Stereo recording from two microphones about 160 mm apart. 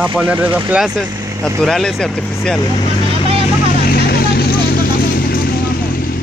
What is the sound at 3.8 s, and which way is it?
Vehicle, 75° left (ahead or behind).